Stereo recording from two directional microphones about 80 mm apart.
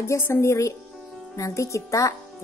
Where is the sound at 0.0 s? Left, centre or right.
Left.